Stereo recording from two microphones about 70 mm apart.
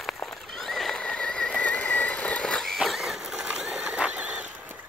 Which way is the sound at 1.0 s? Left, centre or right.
Centre.